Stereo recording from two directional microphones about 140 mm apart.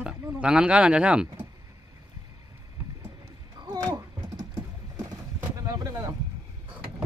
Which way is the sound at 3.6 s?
25° right (ahead or behind).